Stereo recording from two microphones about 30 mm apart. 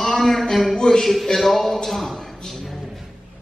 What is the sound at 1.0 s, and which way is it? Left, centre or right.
Speech, centre.